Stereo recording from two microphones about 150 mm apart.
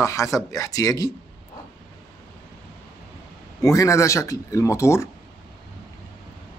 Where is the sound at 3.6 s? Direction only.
20° left (ahead or behind).